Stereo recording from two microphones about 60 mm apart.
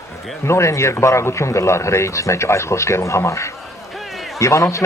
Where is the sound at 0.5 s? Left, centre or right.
Left.